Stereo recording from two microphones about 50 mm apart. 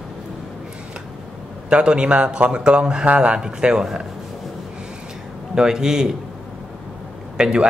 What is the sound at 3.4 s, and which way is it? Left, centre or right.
Speech, centre.